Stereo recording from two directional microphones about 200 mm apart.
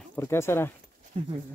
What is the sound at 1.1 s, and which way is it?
Speech, 30° right (ahead or behind).